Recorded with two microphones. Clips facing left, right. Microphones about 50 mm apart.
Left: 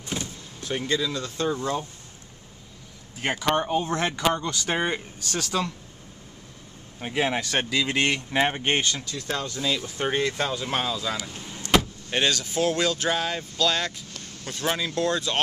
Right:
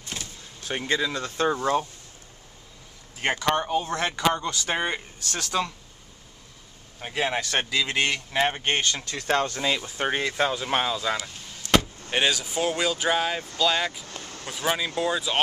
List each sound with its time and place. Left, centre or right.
0.7 s speech: right
3.3 s speech: centre
7.0 s speech: centre
9.0 s speech: right
9.6 s speech: centre
11.3 s vehicle: centre
11.7 s speech: centre